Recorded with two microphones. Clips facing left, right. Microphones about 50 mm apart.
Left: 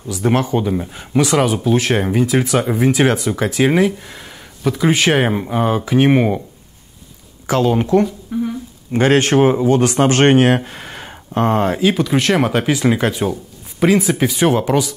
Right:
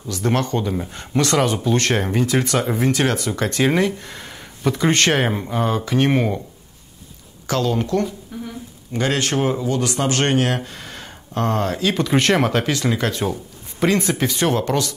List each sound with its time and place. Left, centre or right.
0.1 s speech: centre
7.4 s speech: left
8.9 s speech: left
11.9 s speech: centre
13.2 s speech: centre